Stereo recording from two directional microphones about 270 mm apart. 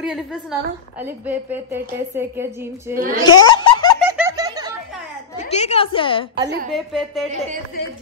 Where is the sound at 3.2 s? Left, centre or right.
Centre.